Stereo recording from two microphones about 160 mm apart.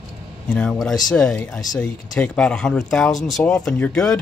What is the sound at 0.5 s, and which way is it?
Speech, 5° left (ahead or behind).